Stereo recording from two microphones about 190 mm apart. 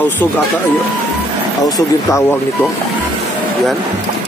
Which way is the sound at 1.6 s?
20° left (ahead or behind).